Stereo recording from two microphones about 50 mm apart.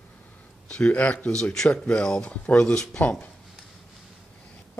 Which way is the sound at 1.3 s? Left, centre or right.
Centre.